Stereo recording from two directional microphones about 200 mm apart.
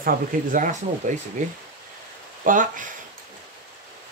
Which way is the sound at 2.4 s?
40° right (ahead or behind).